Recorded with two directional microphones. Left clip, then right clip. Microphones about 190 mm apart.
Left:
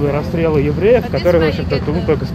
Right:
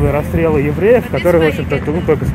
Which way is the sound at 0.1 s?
45° right (ahead or behind).